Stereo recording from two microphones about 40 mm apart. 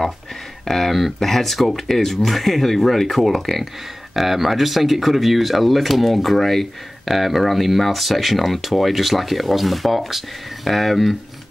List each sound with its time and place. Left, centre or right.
0.7 s speech: centre